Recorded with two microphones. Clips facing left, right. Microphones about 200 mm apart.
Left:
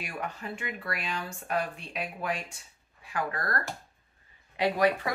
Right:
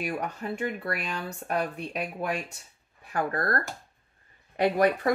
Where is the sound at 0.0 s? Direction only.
40° right (ahead or behind).